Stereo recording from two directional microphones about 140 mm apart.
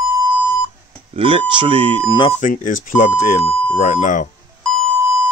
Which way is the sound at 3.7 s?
60° left (ahead or behind).